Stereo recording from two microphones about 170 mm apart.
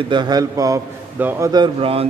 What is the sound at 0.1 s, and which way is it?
A man's voice, 25° right (ahead or behind).